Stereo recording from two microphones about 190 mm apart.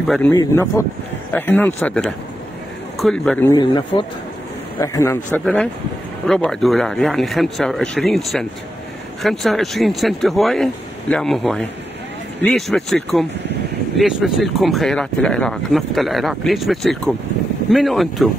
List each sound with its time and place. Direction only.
0.0 s speech: centre (ahead or behind)
0.3 s speech: 15° left (ahead or behind)
3.4 s speech: 20° left (ahead or behind)
5.4 s speech: centre (ahead or behind)